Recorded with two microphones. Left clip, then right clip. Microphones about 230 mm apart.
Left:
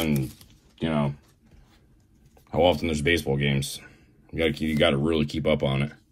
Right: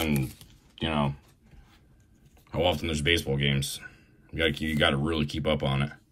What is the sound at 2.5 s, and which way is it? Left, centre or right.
A man's voice, centre.